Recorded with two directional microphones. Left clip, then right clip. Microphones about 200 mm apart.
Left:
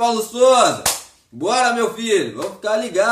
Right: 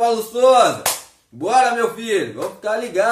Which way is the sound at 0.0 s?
10° left (ahead or behind).